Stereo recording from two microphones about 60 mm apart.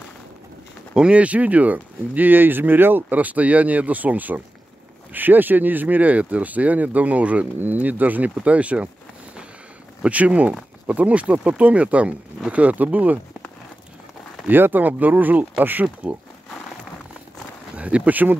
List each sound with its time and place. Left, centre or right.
0.9 s speech: centre
10.0 s speech: right
14.5 s speech: right
17.7 s speech: right